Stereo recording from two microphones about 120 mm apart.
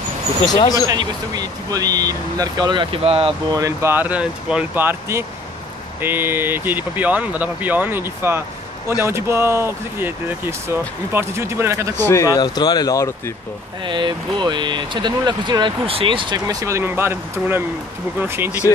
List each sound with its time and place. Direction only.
0.6 s speech: 30° left (ahead or behind)
0.8 s speech: 35° right (ahead or behind); by 3.3 s 50° right (ahead or behind)
3.5 s speech: 25° right (ahead or behind)
12.0 s speech: 25° left (ahead or behind)
13.8 s speech: 40° right (ahead or behind); by 18.5 s 20° right (ahead or behind)